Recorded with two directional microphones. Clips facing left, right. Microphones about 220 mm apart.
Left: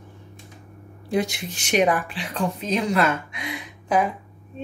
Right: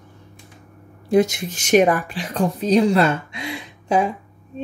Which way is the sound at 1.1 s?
45° right (ahead or behind).